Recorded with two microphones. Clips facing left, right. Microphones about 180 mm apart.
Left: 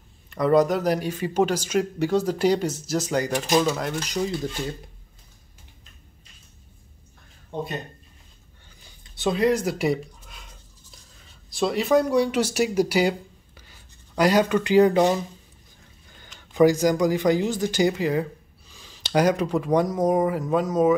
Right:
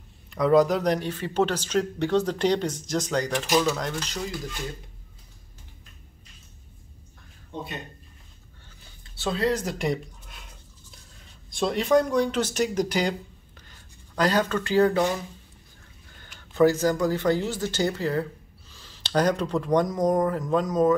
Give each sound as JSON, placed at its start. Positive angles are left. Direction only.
{"t": 0.3, "sound": "a man's voice", "side_deg": 0}
{"t": 4.1, "sound": "speech", "side_deg": 25}
{"t": 9.1, "sound": "a sound", "side_deg": 15}
{"t": 11.5, "sound": "a man's voice", "side_deg": 5}
{"t": 16.3, "sound": "a man's voice", "side_deg": 15}